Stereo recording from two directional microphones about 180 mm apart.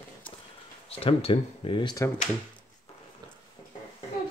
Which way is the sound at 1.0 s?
30° left (ahead or behind).